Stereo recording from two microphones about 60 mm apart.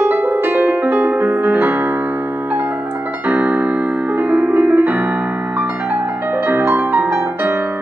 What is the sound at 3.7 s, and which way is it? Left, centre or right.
Music, right.